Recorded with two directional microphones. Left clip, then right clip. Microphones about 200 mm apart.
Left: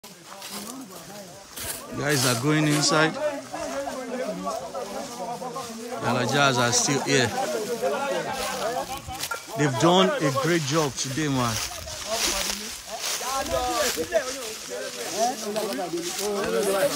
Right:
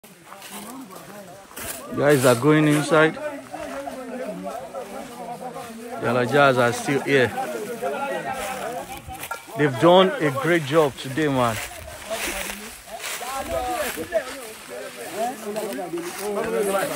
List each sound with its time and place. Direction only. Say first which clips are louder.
2.0 s speech: right 8 dB; centre (ahead or behind)
6.0 s speech: right 5 dB; 10° left (ahead or behind)
7.3 s a sound: left 1 dB; 5° left (ahead or behind)
9.8 s speech: right 5 dB; 15° left (ahead or behind)
10.1 s speech: right 1 dB; 5° left (ahead or behind)
10.4 s speech: right 5 dB; 15° left (ahead or behind)
12.2 s a sound: left 4 dB; 5° left (ahead or behind)
15.1 s speech: left 1 dB; centre (ahead or behind)